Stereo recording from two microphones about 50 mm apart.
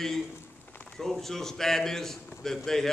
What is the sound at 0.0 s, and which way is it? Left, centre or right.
A man's voice, centre.